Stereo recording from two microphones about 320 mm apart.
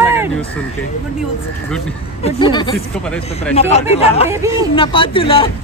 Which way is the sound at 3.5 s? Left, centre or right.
Centre.